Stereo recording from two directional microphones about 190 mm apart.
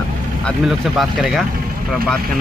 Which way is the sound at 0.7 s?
Centre (ahead or behind).